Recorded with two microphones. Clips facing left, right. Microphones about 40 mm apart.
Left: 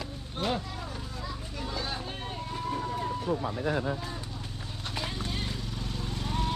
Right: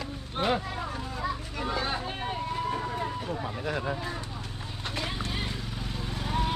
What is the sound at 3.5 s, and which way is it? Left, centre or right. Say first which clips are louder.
Speech: left 1 dB; right.